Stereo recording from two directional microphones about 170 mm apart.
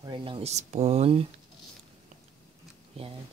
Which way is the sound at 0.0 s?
30° right (ahead or behind).